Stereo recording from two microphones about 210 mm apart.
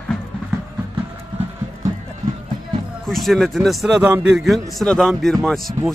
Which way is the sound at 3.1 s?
Centre (ahead or behind).